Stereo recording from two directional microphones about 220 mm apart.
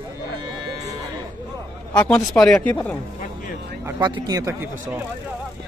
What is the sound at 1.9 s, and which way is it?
Speech, 5° left (ahead or behind).